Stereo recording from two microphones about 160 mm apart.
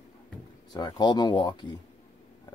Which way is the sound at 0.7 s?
25° left (ahead or behind).